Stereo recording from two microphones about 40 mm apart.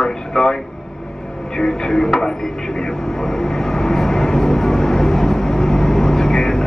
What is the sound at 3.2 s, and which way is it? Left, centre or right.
Vehicle, centre.